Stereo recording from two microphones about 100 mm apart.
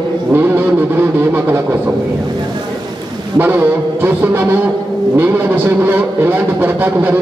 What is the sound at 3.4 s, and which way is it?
A man's voice, 20° right (ahead or behind).